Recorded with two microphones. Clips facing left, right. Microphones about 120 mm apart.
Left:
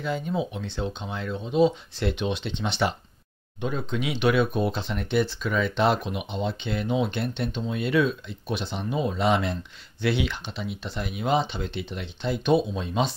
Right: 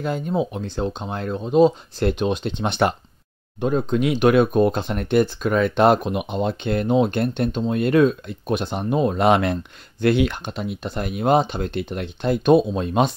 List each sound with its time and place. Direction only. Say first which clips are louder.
0.0 s speech: right 5 dB; 45° right (ahead or behind)